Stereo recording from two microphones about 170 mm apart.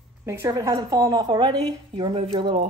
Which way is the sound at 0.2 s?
15° right (ahead or behind).